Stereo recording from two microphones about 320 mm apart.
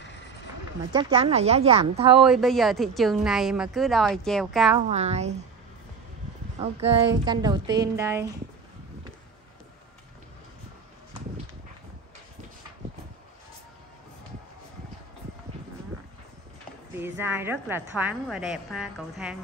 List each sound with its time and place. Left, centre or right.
0.9 s a woman's voice: centre
2.1 s a woman's voice: centre
4.7 s a woman's voice: centre
6.6 s a woman's voice: centre
17.0 s a woman's voice: centre